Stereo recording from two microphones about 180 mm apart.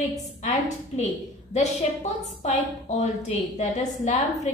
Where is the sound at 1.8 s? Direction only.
40° left (ahead or behind).